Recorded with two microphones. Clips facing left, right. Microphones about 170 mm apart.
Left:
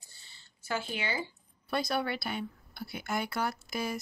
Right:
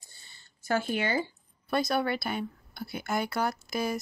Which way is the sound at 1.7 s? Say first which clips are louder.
Right 4 dB; 45° right (ahead or behind).